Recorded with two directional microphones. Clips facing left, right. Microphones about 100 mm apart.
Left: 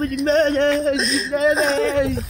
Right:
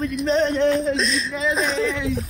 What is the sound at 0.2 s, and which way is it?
Speech, 65° left (ahead or behind).